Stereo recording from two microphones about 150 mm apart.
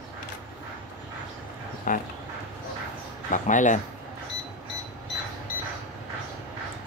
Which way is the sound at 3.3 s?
55° left (ahead or behind).